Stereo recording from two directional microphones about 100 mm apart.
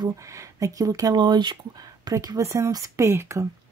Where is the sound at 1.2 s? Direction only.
50° right (ahead or behind); by 3.4 s 30° right (ahead or behind).